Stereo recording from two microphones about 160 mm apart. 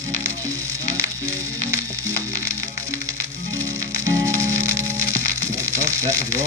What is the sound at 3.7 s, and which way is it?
Music, 20° right (ahead or behind).